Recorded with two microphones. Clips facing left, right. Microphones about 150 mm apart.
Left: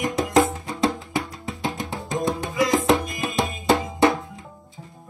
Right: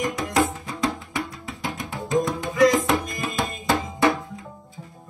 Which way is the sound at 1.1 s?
25° left (ahead or behind).